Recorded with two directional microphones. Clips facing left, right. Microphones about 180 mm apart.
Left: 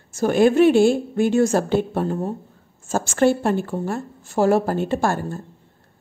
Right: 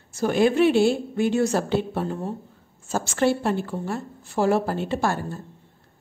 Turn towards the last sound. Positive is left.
turn(degrees=45)  # may be behind; listen again after turning